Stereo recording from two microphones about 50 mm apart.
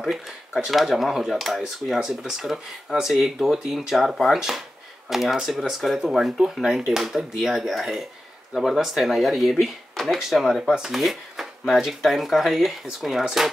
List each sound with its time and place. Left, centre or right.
0.0 s speech: centre
11.0 s speech: centre